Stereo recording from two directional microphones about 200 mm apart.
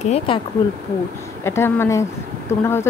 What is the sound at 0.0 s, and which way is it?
Speech, 30° left (ahead or behind).